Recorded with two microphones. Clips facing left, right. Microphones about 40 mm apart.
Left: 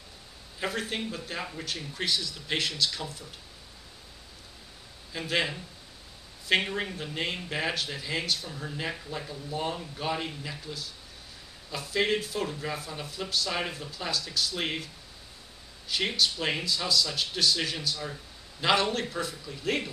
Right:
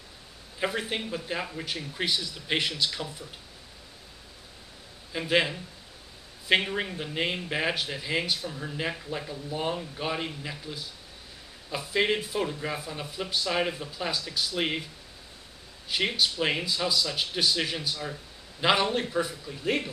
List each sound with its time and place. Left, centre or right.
0.6 s speech: centre
5.1 s speech: centre
6.5 s speech: centre
15.9 s speech: centre